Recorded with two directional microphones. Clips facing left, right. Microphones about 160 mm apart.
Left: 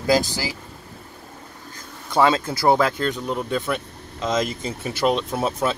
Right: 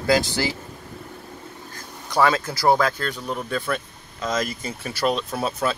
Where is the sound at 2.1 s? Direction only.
25° left (ahead or behind).